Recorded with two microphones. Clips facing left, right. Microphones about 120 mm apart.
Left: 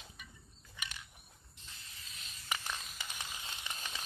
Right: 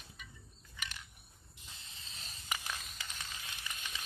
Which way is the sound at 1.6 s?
25° right (ahead or behind).